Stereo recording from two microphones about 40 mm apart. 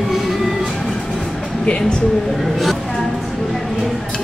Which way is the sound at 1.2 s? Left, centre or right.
Centre.